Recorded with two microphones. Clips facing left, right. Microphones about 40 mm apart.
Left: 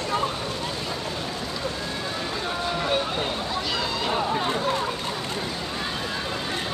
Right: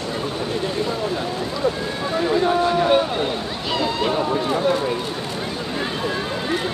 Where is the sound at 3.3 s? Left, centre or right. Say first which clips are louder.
Right 3 dB; centre.